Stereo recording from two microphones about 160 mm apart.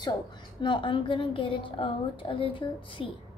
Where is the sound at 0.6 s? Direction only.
30° left (ahead or behind).